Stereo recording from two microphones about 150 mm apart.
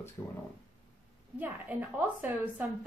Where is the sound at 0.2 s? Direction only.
25° left (ahead or behind).